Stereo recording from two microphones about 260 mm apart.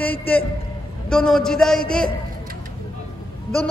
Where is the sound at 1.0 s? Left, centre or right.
Centre.